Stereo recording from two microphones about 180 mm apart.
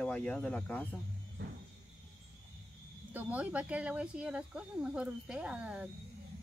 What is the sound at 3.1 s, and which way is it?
Speech, 10° right (ahead or behind).